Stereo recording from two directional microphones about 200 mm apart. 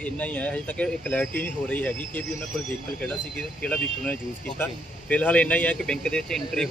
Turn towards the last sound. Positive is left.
turn(degrees=5)  # may be behind; listen again after turning